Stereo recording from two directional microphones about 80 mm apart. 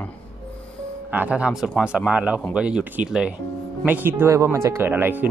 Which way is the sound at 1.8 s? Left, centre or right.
Centre.